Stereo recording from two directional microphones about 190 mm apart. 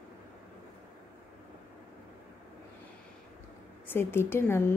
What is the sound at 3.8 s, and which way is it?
Speech, 10° left (ahead or behind).